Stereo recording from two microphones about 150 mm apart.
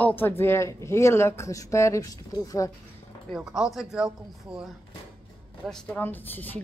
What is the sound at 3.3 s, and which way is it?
Speech, 5° right (ahead or behind).